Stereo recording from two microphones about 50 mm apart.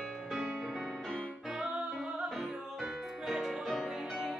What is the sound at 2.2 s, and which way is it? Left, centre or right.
Music, centre.